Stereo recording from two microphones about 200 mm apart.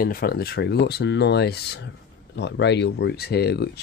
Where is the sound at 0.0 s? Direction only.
45° left (ahead or behind).